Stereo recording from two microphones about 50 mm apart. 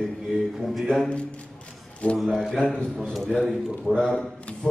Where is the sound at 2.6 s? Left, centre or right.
Left.